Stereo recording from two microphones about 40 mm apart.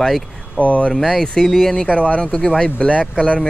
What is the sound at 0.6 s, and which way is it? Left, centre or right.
Speech, left.